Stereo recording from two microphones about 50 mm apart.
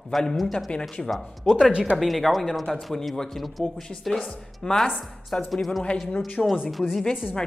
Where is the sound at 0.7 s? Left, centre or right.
Left.